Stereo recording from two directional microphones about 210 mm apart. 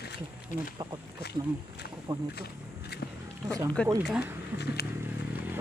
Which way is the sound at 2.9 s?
50° left (ahead or behind).